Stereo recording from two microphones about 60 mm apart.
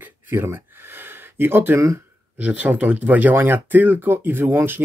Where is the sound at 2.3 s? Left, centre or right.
Right.